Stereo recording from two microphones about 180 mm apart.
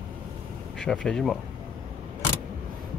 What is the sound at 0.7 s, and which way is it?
Speech, 5° left (ahead or behind).